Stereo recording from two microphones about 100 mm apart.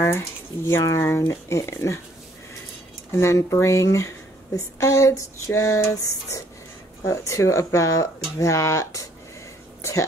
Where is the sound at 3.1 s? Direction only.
30° left (ahead or behind).